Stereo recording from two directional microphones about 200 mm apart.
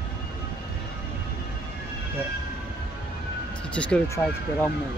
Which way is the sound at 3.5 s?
5° left (ahead or behind).